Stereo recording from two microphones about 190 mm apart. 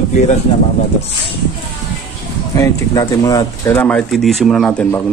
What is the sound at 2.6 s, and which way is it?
Speech, 20° left (ahead or behind).